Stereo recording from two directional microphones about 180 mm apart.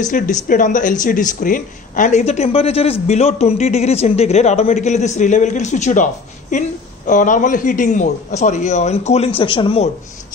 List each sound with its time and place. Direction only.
0.1 s speech: 50° left (ahead or behind); by 9.8 s 30° left (ahead or behind)